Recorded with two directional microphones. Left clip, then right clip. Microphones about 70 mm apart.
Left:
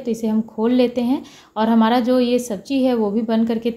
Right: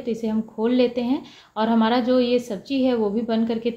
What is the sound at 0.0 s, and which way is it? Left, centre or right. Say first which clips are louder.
A woman's voice: left 3 dB; left.